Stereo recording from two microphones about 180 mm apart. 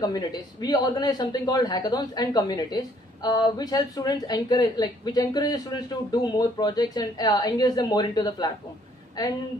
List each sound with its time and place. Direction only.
0.0 s a woman's voice: 20° left (ahead or behind)